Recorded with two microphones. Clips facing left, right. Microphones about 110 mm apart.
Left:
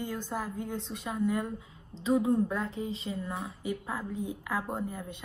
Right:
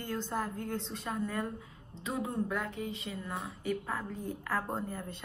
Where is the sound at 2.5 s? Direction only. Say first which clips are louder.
Left 2 dB; 30° left (ahead or behind).